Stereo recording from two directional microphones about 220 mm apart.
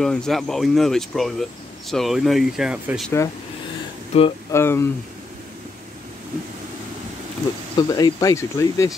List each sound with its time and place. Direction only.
0.0 s speech: centre (ahead or behind)
4.1 s speech: 30° left (ahead or behind)
4.5 s speech: 10° left (ahead or behind)
7.7 s speech: 20° left (ahead or behind)